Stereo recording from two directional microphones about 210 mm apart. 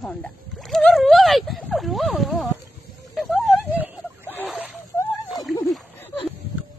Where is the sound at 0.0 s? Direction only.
5° left (ahead or behind).